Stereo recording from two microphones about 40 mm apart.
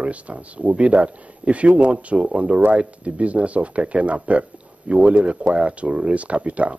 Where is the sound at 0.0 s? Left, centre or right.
Right.